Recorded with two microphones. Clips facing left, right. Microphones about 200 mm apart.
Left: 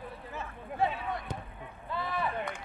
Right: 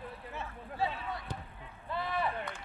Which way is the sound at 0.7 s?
50° left (ahead or behind).